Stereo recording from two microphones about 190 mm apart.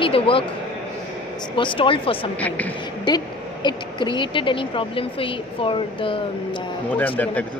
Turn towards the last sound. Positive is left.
turn(degrees=10)  # may be behind; listen again after turning